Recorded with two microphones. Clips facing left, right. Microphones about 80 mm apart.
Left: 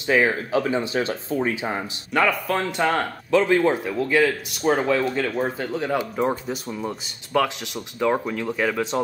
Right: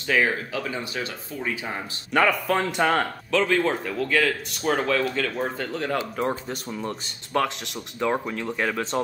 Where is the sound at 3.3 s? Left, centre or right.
Centre.